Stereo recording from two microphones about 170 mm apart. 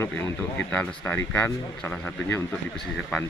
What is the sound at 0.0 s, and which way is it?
Speech, 10° left (ahead or behind).